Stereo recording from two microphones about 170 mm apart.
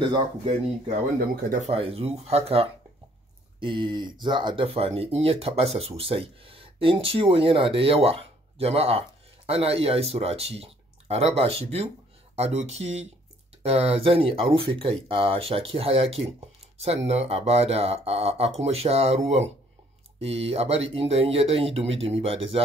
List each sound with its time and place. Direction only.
1.3 s speech: 50° right (ahead or behind)
1.7 s speech: 35° right (ahead or behind)